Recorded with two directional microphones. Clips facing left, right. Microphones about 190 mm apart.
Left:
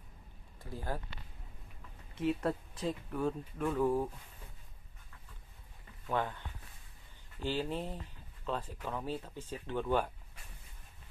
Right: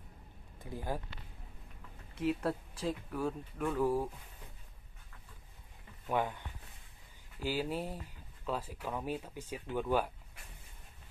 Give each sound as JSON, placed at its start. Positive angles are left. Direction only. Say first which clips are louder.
{"t": 0.7, "sound": "speech", "louder": "right 1 dB", "side_deg": -15}
{"t": 2.1, "sound": "speech", "louder": "left 1 dB", "side_deg": 0}
{"t": 6.0, "sound": "speech", "louder": "right 1 dB", "side_deg": -15}
{"t": 7.4, "sound": "speech", "louder": "even", "side_deg": -10}